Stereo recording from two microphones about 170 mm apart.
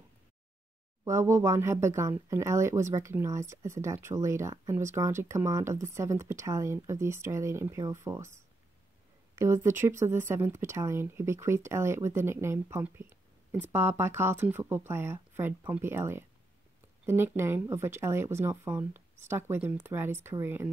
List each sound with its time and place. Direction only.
1.0 s speech: 15° right (ahead or behind)
9.3 s speech: 15° right (ahead or behind)